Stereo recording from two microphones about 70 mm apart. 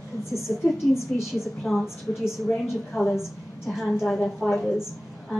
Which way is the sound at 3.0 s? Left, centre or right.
Left.